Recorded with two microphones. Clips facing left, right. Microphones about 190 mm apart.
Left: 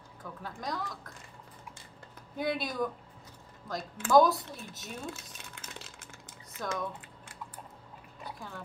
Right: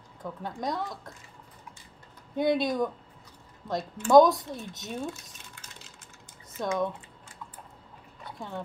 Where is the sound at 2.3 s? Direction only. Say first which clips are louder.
Right 7 dB; 25° right (ahead or behind).